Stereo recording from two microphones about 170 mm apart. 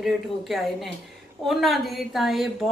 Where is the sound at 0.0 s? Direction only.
Centre (ahead or behind).